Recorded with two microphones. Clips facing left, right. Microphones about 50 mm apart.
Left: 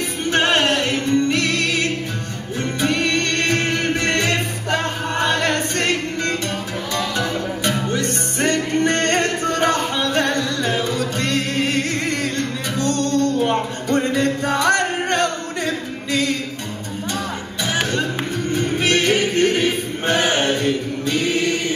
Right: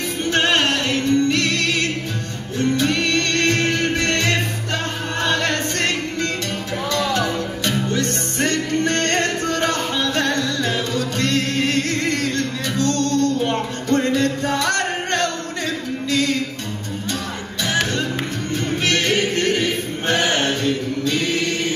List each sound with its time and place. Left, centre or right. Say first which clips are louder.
0.3 s music: left 1 dB; left
7.9 s music: even; left
13.4 s music: left 2 dB; centre
18.5 s music: left 2 dB; centre